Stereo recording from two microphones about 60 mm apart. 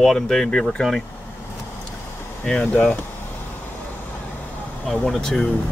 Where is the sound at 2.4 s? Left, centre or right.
Centre.